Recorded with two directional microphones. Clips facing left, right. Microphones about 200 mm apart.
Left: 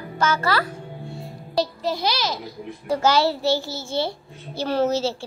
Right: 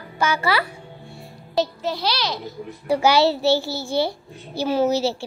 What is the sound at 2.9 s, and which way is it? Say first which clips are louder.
Speech: right 2 dB; 15° right (ahead or behind).